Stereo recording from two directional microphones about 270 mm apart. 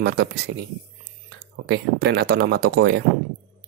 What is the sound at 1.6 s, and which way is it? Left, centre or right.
Speech, right.